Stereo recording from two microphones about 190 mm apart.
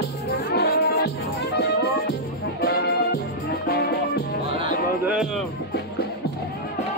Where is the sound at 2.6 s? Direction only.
55° left (ahead or behind).